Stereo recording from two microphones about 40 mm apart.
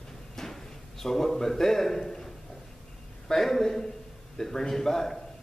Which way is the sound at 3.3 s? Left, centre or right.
Centre.